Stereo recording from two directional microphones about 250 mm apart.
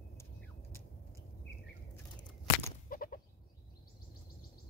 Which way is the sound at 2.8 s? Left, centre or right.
Left.